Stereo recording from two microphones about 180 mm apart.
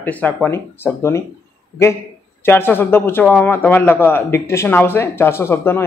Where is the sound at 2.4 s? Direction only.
10° left (ahead or behind).